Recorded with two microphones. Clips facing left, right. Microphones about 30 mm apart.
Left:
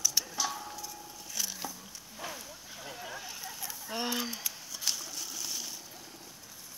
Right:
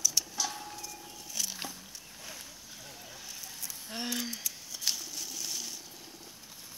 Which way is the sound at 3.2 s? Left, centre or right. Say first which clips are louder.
Left 3 dB; centre.